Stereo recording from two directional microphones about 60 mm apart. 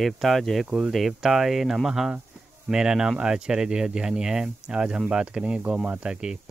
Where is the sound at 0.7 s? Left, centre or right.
Centre.